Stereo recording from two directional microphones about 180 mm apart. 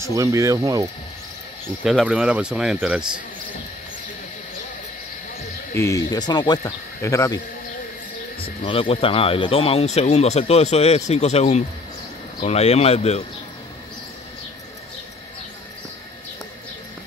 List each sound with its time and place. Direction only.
0.0 s speech: 15° right (ahead or behind)
1.9 s speech: 5° right (ahead or behind)
5.8 s speech: 20° left (ahead or behind)
8.4 s speech: 30° left (ahead or behind)